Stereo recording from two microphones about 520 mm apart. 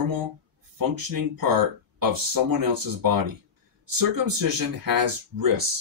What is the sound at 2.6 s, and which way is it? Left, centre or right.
Speech, right.